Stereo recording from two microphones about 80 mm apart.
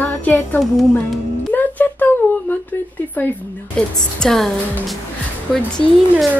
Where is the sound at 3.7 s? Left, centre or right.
Centre.